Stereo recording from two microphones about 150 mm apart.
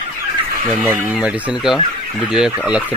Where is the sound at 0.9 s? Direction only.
5° right (ahead or behind).